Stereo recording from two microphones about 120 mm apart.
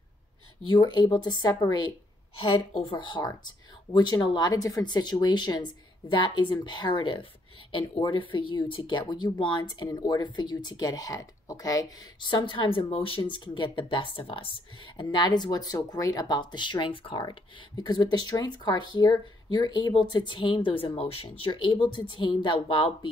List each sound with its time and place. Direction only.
0.7 s speech: 40° left (ahead or behind)